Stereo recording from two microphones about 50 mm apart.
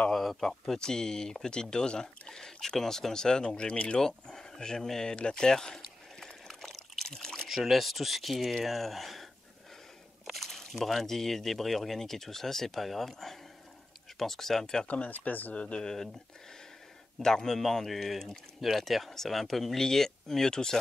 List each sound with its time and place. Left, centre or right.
0.1 s speech: centre; by 4.0 s left
4.0 s speech: centre
5.8 s a sound: centre
7.1 s pour: centre
7.4 s a man's voice: centre
14.9 s speech: left
15.5 s speech: left
17.2 s a man's voice: centre